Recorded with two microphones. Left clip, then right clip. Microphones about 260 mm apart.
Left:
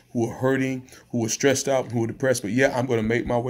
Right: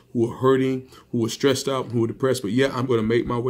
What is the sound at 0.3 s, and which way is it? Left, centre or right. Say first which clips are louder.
Speech: right 5 dB; left.